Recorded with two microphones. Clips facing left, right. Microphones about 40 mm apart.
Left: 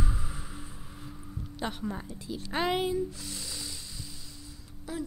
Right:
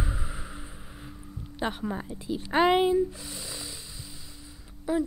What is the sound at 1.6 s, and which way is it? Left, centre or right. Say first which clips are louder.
Speech: right 4 dB; centre.